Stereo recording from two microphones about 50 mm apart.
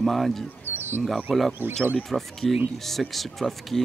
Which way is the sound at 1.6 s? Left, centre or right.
Right.